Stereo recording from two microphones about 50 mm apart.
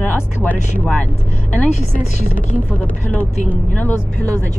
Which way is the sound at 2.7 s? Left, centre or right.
Left.